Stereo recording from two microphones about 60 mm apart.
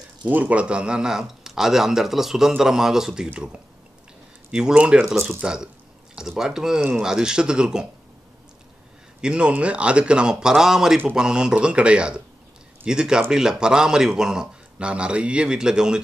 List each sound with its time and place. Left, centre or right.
0.3 s speech: right
4.5 s speech: centre
5.1 s speech: right
5.4 s speech: centre
9.2 s speech: centre